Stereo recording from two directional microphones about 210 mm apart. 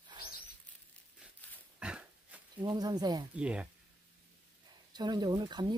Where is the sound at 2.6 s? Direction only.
20° right (ahead or behind).